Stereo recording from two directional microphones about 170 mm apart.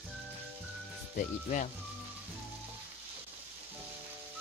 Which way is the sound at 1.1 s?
45° left (ahead or behind).